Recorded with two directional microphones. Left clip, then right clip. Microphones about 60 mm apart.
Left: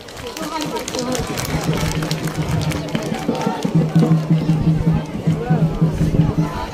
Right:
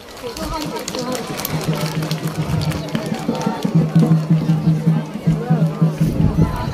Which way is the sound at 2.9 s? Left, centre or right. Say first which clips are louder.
Even; right.